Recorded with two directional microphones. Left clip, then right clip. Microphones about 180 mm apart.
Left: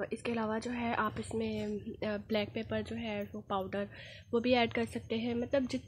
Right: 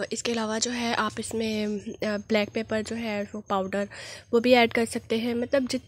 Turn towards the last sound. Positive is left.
turn(degrees=-45)  # may be behind; listen again after turning